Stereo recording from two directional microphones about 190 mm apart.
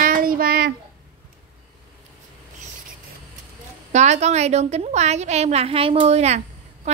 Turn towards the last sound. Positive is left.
turn(degrees=-35)  # may be behind; listen again after turning